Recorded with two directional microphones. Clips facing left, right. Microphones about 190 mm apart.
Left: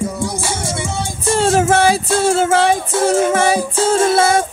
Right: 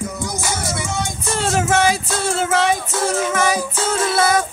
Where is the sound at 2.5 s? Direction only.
30° left (ahead or behind).